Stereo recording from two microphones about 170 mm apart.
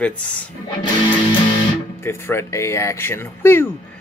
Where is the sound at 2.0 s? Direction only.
15° left (ahead or behind).